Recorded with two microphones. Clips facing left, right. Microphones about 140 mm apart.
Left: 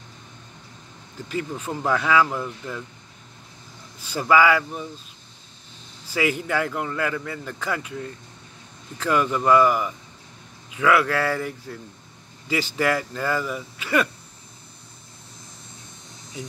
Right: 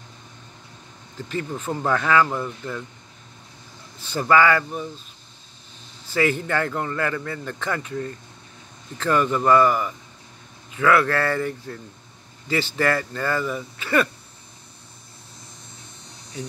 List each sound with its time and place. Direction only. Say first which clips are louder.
1.3 s a man's voice: right 1 dB; 5° left (ahead or behind)
4.0 s speech: even; 5° left (ahead or behind)
6.1 s a man's voice: right 1 dB; 10° left (ahead or behind)